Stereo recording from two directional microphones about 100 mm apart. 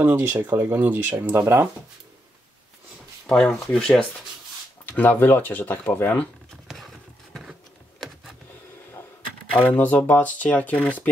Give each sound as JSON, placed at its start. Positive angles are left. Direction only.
{"t": 0.1, "sound": "speech", "side_deg": -20}
{"t": 3.3, "sound": "speech", "side_deg": 10}
{"t": 6.5, "sound": "a sound", "side_deg": 0}
{"t": 9.5, "sound": "speech", "side_deg": 15}